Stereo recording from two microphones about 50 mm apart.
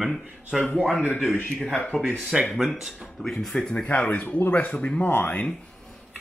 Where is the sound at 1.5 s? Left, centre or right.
Centre.